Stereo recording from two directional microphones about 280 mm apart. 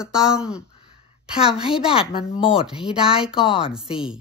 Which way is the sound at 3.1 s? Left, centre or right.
Centre.